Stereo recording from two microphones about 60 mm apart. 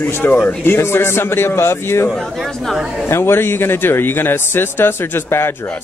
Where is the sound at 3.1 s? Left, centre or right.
Left.